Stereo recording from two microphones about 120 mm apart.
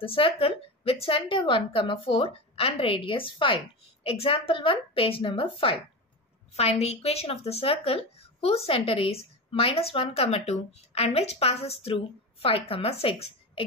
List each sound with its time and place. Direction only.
0.0 s speech: 50° left (ahead or behind)
6.5 s speech: 60° left (ahead or behind)